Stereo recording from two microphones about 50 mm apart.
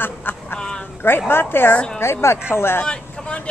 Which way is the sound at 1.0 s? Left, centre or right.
Left.